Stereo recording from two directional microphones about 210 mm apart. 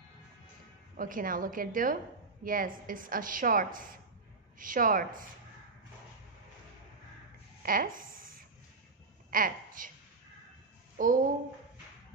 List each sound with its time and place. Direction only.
0.9 s a woman's voice: 40° right (ahead or behind)
7.6 s speech: 45° right (ahead or behind)
9.3 s a woman's voice: 40° right (ahead or behind)
11.0 s speech: 40° right (ahead or behind)